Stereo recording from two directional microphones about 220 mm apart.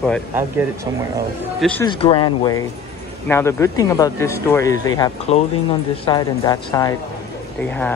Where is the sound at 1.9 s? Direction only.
20° left (ahead or behind).